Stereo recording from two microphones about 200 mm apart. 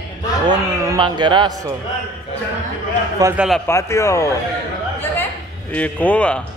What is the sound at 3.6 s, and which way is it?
Speech, 15° left (ahead or behind).